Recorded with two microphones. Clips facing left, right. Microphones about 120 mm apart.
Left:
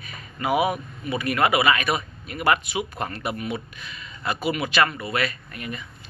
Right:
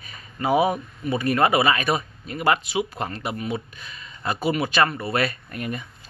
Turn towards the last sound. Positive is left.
turn(degrees=-45)  # may be behind; listen again after turning